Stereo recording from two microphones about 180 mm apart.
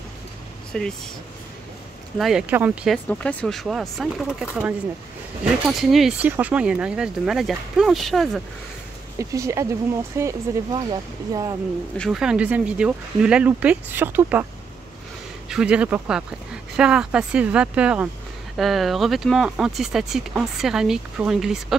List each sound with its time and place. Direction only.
0.7 s speech: 5° left (ahead or behind)
2.1 s speech: centre (ahead or behind)
3.1 s speech: 5° left (ahead or behind)
9.2 s speech: 15° right (ahead or behind)
12.0 s speech: 5° right (ahead or behind)
15.5 s speech: 5° right (ahead or behind)